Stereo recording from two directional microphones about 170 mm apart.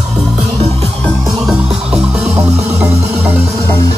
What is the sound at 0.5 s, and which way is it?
Music, 40° right (ahead or behind).